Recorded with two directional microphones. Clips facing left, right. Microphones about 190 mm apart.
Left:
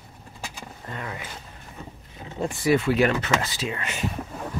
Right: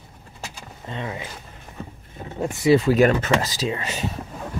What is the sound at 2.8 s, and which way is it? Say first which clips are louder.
Speech: right 4 dB; 40° right (ahead or behind).